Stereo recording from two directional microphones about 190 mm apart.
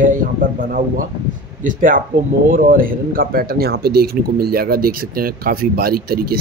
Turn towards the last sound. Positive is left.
turn(degrees=-55)  # may be behind; listen again after turning